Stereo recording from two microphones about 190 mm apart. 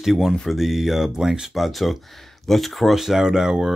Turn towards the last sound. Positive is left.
turn(degrees=-5)  # may be behind; listen again after turning